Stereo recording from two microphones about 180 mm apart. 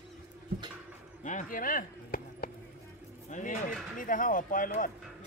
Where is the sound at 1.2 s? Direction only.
45° left (ahead or behind).